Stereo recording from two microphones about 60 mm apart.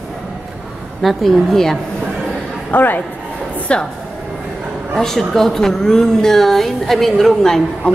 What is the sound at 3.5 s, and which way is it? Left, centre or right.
Music, left.